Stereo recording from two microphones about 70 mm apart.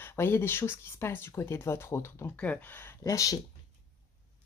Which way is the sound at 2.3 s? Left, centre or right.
Left.